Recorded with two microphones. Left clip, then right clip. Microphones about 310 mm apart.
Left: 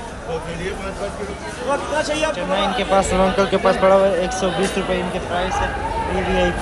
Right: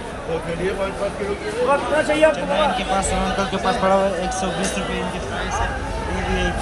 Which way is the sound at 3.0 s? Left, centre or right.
Centre.